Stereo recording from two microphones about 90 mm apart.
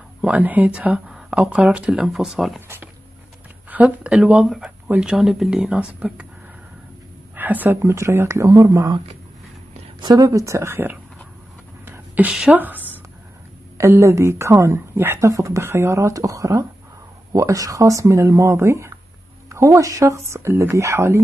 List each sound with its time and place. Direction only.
0.2 s speech: 15° right (ahead or behind); by 2.6 s centre (ahead or behind)
3.7 s speech: 15° right (ahead or behind)
4.8 s speech: 15° right (ahead or behind)
5.1 s speech: 5° right (ahead or behind)
7.3 s speech: 20° right (ahead or behind); by 8.9 s 40° right (ahead or behind)
9.9 s speech: 50° right (ahead or behind); by 11.0 s 25° right (ahead or behind)
11.8 s a sound: 25° right (ahead or behind)
12.3 s speech: 10° right (ahead or behind)
12.5 s a woman's voice: 20° right (ahead or behind)